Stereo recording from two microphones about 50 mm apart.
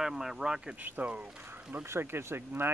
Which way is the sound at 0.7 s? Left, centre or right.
Right.